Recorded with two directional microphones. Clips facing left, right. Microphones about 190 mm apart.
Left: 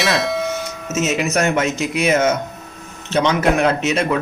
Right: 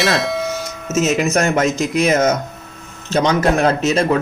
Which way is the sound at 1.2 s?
45° right (ahead or behind).